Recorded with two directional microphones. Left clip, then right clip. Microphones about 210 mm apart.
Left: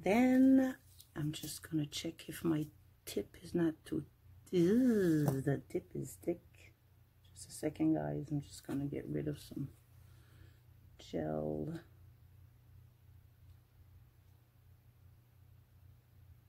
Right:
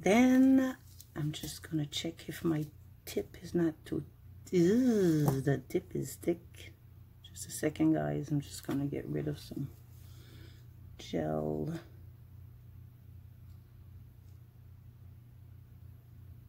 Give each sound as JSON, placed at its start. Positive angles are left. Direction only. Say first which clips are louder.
{"t": 0.0, "sound": "a sound", "louder": "right 4 dB", "side_deg": -5}
{"t": 3.1, "sound": "speech", "louder": "right 3 dB", "side_deg": 10}
{"t": 7.6, "sound": "speech", "louder": "right 4 dB", "side_deg": -5}
{"t": 11.0, "sound": "speech", "louder": "right 4 dB", "side_deg": 0}